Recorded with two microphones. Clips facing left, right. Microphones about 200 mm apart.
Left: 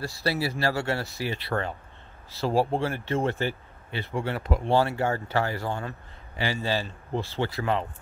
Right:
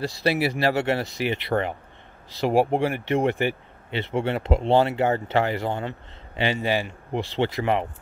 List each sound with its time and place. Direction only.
0.0 s speech: 20° right (ahead or behind)